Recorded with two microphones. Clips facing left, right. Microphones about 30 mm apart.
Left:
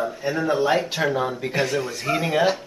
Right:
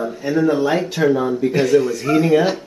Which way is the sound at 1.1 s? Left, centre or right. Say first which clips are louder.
Right 6 dB; centre.